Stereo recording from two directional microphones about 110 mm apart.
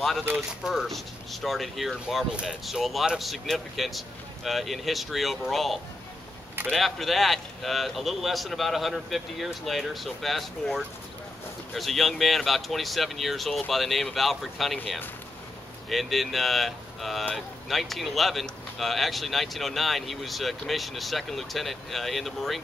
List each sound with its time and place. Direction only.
0.2 s speech: 15° right (ahead or behind)
0.7 s speech: centre (ahead or behind)